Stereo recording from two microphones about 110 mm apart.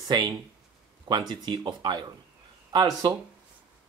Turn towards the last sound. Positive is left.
turn(degrees=-40)  # may be behind; listen again after turning